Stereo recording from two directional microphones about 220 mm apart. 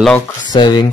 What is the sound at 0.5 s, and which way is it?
Speech, 20° left (ahead or behind).